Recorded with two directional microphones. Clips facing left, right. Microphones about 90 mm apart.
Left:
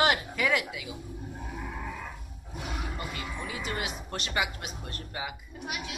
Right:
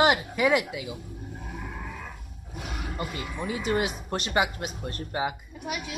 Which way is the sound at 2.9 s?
25° right (ahead or behind).